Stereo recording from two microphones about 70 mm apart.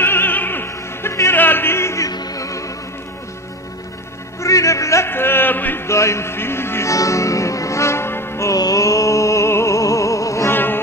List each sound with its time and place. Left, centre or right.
0.0 s opera: left
1.3 s music: left
2.0 s music: left
4.4 s music: left
5.1 s a sound: left
5.9 s music: left
6.9 s music: left
8.5 s music: left
10.5 s music: left